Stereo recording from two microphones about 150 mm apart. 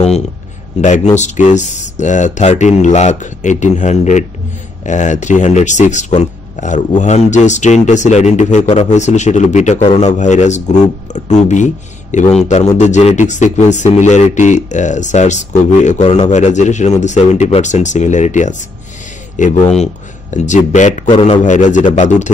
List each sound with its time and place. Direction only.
0.7 s speech: 55° left (ahead or behind)
19.6 s a man's voice: 45° left (ahead or behind)